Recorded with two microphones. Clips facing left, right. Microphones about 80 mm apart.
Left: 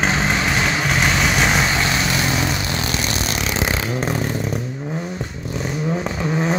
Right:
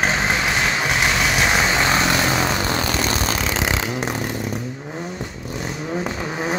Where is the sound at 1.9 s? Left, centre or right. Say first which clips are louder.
Right 2 dB; right.